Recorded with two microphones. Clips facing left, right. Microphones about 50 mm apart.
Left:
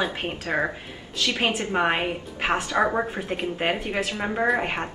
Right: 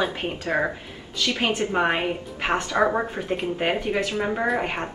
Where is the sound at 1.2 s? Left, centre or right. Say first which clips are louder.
Even; left.